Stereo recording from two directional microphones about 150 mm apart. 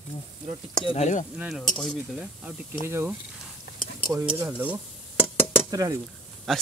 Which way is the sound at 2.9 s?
15° right (ahead or behind).